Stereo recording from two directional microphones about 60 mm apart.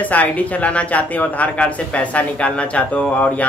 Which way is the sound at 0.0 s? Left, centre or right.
Left.